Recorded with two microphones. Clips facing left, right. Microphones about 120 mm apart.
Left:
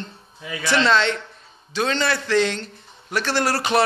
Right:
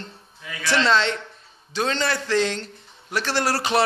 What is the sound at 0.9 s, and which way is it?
A man's voice, 30° right (ahead or behind).